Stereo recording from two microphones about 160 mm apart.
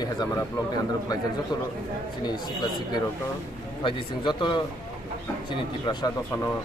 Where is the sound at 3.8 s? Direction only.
30° left (ahead or behind).